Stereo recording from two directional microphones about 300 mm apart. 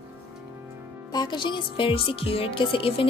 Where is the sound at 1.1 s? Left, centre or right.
Centre.